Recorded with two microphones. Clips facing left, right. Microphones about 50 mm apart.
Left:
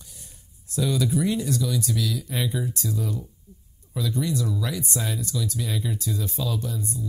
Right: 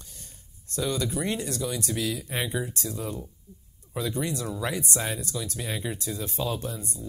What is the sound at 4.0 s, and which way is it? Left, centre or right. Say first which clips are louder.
Speech: left 3 dB; right.